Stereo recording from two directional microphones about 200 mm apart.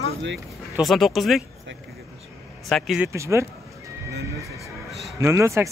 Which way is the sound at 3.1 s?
15° right (ahead or behind).